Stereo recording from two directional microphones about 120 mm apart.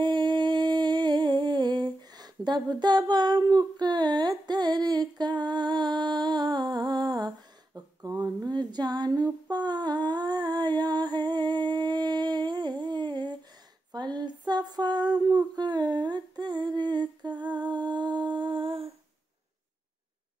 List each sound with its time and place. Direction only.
0.0 s humming: 40° right (ahead or behind)
13.9 s female singing: 35° right (ahead or behind)